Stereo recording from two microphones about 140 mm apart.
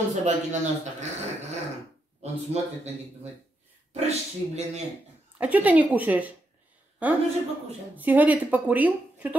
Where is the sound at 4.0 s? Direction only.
50° right (ahead or behind).